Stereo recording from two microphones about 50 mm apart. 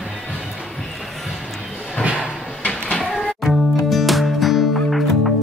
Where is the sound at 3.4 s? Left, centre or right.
Centre.